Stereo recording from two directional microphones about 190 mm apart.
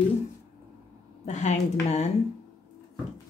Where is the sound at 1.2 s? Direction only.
35° left (ahead or behind).